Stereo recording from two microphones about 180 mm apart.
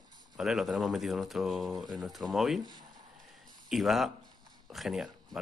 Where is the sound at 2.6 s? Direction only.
20° right (ahead or behind).